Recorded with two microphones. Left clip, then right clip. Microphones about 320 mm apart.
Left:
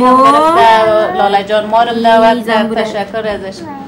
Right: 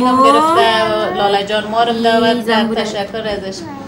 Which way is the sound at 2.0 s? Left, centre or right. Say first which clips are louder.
Left 5 dB; left.